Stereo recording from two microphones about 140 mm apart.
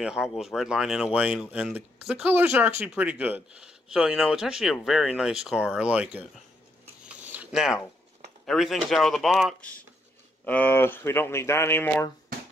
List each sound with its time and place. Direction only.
0.0 s speech: 5° right (ahead or behind)
7.2 s zipper: 10° right (ahead or behind)
8.5 s speech: centre (ahead or behind); by 12.1 s 15° left (ahead or behind)